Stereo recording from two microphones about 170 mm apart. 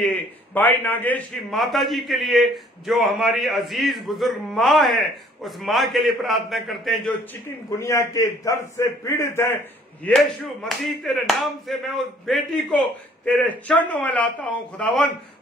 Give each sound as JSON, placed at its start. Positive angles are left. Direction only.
{"t": 0.6, "sound": "a man's voice", "side_deg": 10}
{"t": 7.4, "sound": "speech", "side_deg": 15}
{"t": 10.0, "sound": "speech", "side_deg": 0}